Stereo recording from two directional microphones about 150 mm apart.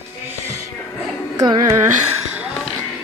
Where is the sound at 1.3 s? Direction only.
25° right (ahead or behind).